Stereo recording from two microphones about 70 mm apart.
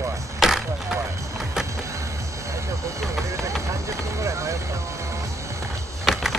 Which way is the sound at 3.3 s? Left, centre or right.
Right.